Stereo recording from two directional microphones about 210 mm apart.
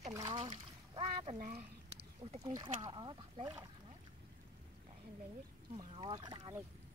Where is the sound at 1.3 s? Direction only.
40° right (ahead or behind).